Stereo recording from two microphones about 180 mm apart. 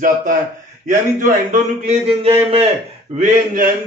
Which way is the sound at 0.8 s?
45° right (ahead or behind).